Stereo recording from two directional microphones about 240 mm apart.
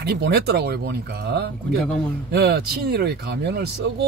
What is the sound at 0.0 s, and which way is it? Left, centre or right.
Speech, right.